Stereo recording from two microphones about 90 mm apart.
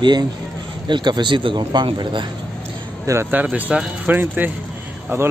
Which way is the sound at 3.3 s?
20° right (ahead or behind).